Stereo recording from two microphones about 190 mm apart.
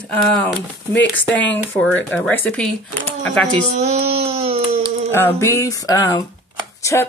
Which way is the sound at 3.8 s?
35° right (ahead or behind).